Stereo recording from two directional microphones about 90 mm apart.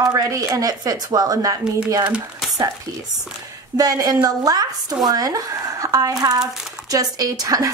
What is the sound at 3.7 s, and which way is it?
A woman's voice, 45° right (ahead or behind).